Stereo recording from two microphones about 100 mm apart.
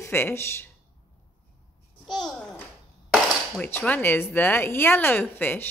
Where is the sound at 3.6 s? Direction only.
15° left (ahead or behind).